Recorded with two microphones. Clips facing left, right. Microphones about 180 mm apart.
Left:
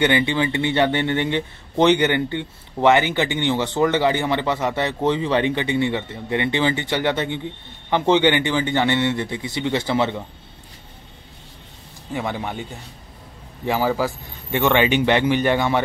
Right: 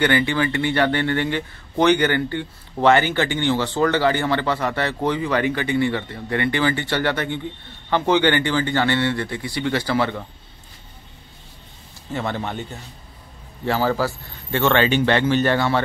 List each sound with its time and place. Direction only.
0.0 s speech: 20° left (ahead or behind)
12.1 s a man's voice: 10° left (ahead or behind)
13.7 s a man's voice: 15° left (ahead or behind)